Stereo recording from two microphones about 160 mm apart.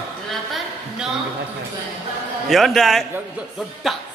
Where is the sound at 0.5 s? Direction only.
5° right (ahead or behind).